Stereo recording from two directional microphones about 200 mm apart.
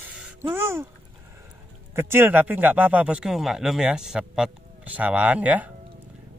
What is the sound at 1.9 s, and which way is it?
Speech, 10° right (ahead or behind).